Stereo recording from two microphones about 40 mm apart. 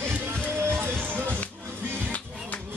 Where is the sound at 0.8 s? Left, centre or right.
Right.